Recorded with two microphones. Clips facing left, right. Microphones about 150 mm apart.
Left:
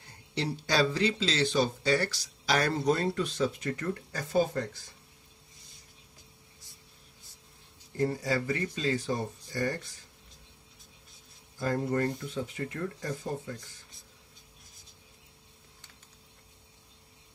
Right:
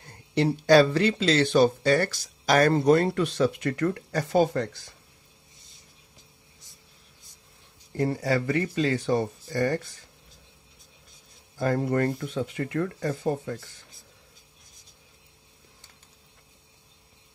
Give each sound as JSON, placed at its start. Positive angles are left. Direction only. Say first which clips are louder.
{"t": 0.3, "sound": "speech", "louder": "right 12 dB", "side_deg": -55}
{"t": 8.0, "sound": "speech", "louder": "right 4 dB", "side_deg": -65}
{"t": 11.5, "sound": "speech", "louder": "right 5 dB", "side_deg": -70}